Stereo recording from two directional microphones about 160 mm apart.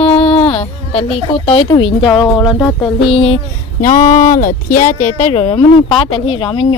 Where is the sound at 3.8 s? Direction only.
55° left (ahead or behind); by 6.7 s 35° left (ahead or behind).